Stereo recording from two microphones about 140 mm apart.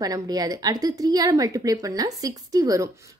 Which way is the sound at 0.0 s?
25° right (ahead or behind).